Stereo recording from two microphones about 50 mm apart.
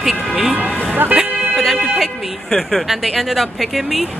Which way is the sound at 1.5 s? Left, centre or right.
Centre.